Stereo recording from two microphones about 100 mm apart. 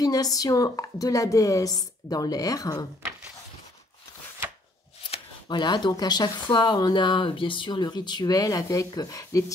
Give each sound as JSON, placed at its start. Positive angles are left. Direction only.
{"t": 0.0, "sound": "a woman's voice", "side_deg": 40}
{"t": 5.5, "sound": "speech", "side_deg": 50}